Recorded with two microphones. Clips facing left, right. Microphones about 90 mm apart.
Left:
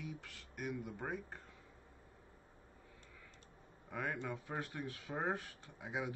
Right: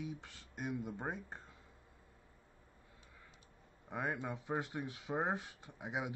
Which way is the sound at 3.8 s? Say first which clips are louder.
Right 2 dB; 20° right (ahead or behind).